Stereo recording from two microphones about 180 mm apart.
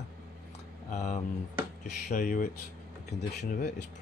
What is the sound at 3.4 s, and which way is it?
Speech, 65° left (ahead or behind).